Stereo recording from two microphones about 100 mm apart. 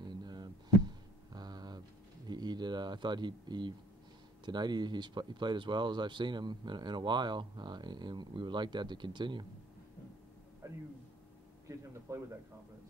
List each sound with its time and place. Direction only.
0.0 s a sound: 45° right (ahead or behind)
4.5 s speech: 45° right (ahead or behind)
10.6 s a man's voice: 30° right (ahead or behind)
12.1 s speech: 30° right (ahead or behind)